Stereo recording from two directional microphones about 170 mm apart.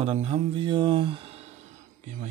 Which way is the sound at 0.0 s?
40° right (ahead or behind).